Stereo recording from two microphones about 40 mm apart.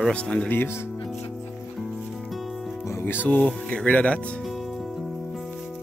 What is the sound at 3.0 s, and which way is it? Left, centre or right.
Music, left.